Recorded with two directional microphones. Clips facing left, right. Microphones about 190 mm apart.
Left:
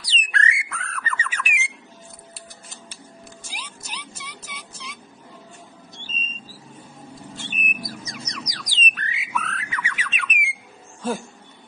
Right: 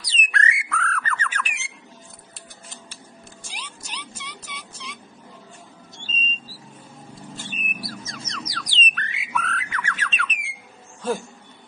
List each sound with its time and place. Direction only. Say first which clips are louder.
0.0 s bird: even; 30° left (ahead or behind); by 1.7 s 10° left (ahead or behind)
3.5 s music: right 1 dB; 10° left (ahead or behind)
5.9 s a sound: right 4 dB; 20° left (ahead or behind)
7.5 s bird: left 1 dB; 15° left (ahead or behind)